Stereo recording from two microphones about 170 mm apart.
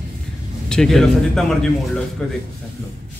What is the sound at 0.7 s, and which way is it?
Speech, 5° left (ahead or behind).